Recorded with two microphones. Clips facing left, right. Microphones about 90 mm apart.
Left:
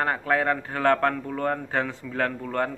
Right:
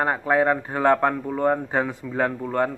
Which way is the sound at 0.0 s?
15° right (ahead or behind).